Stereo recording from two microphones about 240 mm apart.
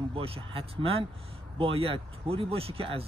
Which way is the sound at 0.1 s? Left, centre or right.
Right.